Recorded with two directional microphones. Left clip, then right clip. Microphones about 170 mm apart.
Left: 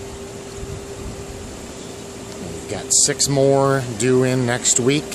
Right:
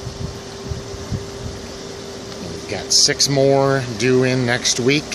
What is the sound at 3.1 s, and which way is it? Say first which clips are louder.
Speech: right 1 dB; 5° left (ahead or behind).